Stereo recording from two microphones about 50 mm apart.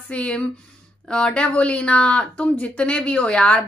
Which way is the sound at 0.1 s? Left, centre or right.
Left.